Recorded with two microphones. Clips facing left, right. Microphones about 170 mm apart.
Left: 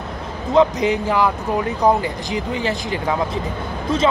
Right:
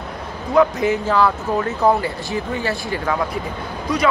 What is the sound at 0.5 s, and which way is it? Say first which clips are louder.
Speech: even; 20° left (ahead or behind).